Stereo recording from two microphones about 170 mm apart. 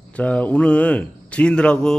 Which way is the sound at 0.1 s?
10° left (ahead or behind).